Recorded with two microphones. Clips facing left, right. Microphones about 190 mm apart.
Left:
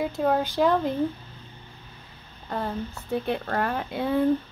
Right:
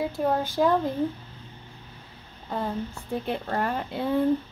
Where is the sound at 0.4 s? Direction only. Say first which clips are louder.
Left 1 dB; 15° left (ahead or behind).